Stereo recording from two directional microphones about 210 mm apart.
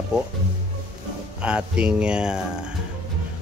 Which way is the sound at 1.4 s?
5° right (ahead or behind).